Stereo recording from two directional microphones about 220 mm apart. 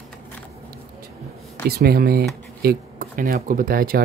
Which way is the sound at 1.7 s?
45° right (ahead or behind).